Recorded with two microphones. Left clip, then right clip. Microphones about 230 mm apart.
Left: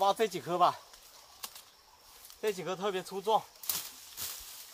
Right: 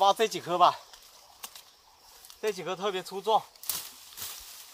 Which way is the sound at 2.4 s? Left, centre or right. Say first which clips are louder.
Right 2 dB; centre.